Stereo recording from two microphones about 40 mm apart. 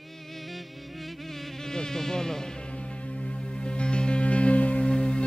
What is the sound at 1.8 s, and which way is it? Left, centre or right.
Insect, centre.